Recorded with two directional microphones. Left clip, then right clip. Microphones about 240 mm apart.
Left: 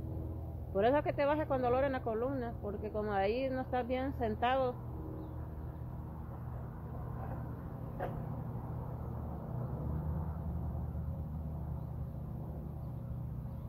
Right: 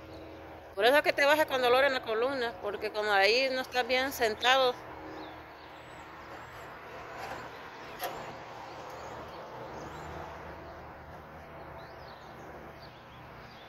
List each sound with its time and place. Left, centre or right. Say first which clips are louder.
0.7 s speech: right 6 dB; centre